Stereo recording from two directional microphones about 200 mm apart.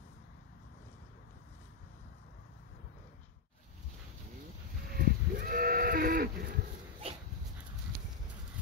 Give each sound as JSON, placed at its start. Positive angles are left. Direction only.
{"t": 4.9, "sound": "livestock", "side_deg": -45}
{"t": 7.0, "sound": "dog", "side_deg": -30}